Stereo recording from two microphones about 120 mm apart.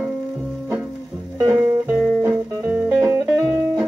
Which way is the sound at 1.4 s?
20° right (ahead or behind).